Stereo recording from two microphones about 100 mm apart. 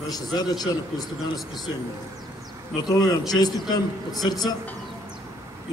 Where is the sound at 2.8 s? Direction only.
40° left (ahead or behind).